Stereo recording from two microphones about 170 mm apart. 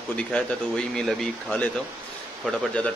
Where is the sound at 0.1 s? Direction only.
5° left (ahead or behind).